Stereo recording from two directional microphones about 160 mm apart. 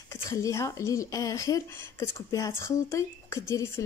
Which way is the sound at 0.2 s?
20° left (ahead or behind).